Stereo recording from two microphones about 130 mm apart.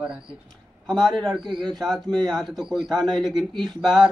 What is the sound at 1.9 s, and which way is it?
Speech, 30° right (ahead or behind).